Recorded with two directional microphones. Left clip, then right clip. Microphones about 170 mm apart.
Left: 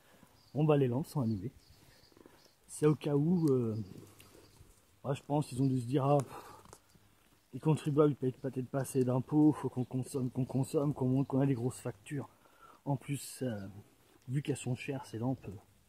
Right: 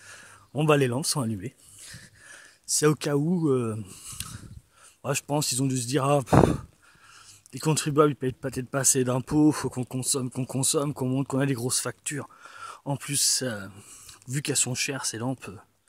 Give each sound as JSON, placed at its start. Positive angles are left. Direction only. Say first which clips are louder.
{"t": 0.5, "sound": "speech", "louder": "right 8 dB", "side_deg": -15}
{"t": 2.8, "sound": "speech", "louder": "right 6 dB", "side_deg": -15}
{"t": 7.5, "sound": "speech", "louder": "right 8 dB", "side_deg": -15}